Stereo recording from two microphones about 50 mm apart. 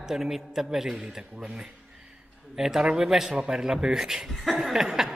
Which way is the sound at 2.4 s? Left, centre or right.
Centre.